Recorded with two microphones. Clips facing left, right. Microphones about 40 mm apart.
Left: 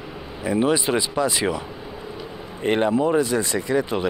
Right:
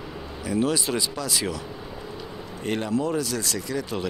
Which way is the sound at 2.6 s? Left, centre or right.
Left.